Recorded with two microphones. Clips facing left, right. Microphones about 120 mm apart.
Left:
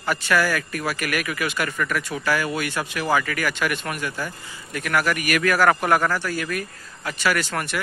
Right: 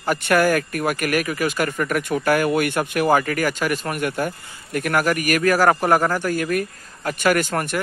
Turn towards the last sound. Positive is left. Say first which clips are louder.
# right 4 dB
turn(degrees=-45)  # may be behind; listen again after turning